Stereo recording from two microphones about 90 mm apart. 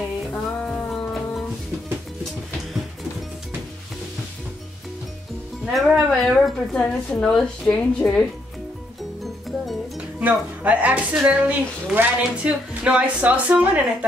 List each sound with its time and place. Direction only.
0.3 s music: 10° left (ahead or behind)
5.7 s a woman's voice: centre (ahead or behind)
9.2 s music: centre (ahead or behind)
10.1 s speech: 15° right (ahead or behind)